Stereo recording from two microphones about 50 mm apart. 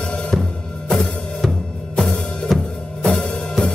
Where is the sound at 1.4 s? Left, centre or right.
Centre.